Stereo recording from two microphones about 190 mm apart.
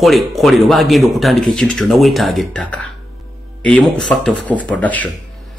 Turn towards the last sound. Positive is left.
turn(degrees=10)  # may be behind; listen again after turning